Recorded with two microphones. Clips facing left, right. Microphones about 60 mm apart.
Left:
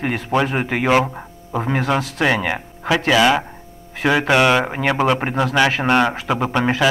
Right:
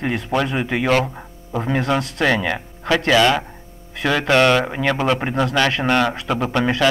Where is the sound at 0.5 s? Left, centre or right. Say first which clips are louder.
Left 1 dB; left.